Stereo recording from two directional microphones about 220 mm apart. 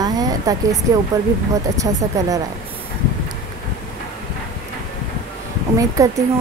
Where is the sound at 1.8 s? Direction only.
15° right (ahead or behind).